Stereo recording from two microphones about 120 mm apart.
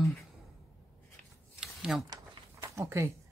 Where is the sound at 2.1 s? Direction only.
25° right (ahead or behind).